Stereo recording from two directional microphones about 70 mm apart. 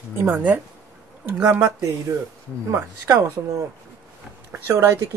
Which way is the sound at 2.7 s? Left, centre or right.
Right.